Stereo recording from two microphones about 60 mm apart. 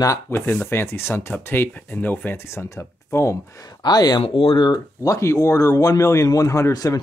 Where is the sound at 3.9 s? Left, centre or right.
Left.